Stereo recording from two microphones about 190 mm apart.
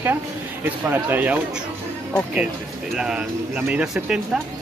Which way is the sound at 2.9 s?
5° right (ahead or behind).